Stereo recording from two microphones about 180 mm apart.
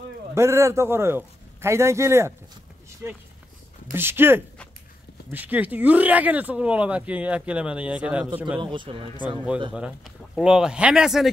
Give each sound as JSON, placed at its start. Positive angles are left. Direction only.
{"t": 0.3, "sound": "a man's voice", "side_deg": -15}
{"t": 8.5, "sound": "speech", "side_deg": -25}
{"t": 9.7, "sound": "speech", "side_deg": -5}